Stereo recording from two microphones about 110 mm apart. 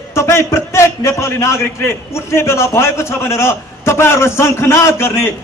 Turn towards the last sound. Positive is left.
turn(degrees=25)  # may be behind; listen again after turning